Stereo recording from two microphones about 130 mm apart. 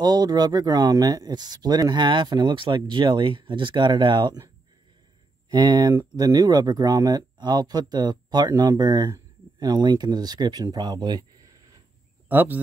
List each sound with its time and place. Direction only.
0.0 s speech: 30° right (ahead or behind)
5.5 s speech: 35° right (ahead or behind)
12.3 s speech: 15° right (ahead or behind)